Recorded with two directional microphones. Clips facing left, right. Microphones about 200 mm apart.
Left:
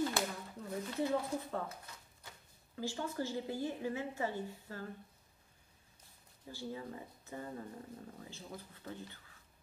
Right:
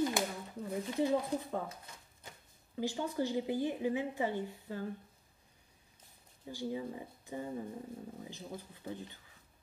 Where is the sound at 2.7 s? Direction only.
15° right (ahead or behind).